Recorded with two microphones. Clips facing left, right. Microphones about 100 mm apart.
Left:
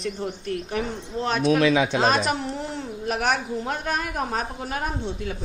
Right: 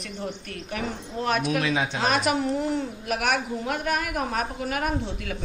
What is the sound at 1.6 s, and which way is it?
Speech, 90° left.